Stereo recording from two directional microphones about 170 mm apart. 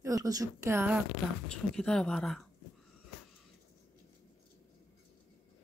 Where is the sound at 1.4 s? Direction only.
5° left (ahead or behind).